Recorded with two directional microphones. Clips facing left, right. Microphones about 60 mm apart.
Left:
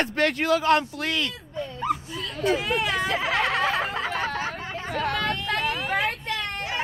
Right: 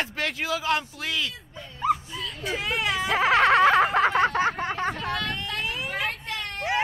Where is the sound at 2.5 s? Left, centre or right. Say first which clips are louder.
Left 3 dB; centre.